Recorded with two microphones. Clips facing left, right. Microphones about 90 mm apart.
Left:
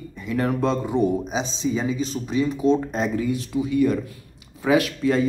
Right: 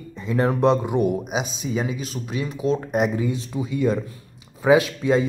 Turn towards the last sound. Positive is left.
turn(degrees=-20)  # may be behind; listen again after turning